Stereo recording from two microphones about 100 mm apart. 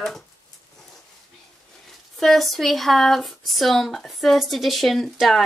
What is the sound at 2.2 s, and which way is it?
Speech, centre (ahead or behind).